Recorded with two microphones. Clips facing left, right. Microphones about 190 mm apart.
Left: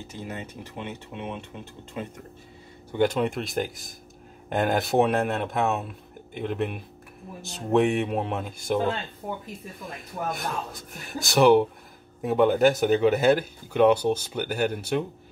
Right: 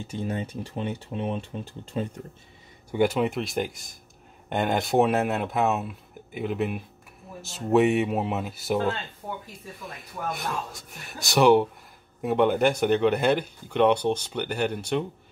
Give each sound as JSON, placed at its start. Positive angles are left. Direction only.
{"t": 0.1, "sound": "speech", "side_deg": -30}
{"t": 2.9, "sound": "speech", "side_deg": -10}
{"t": 10.3, "sound": "speech", "side_deg": 0}